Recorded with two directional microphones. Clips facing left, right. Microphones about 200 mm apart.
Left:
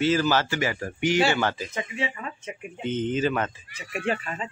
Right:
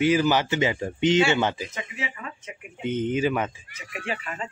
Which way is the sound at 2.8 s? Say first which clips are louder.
Right 1 dB; 10° right (ahead or behind).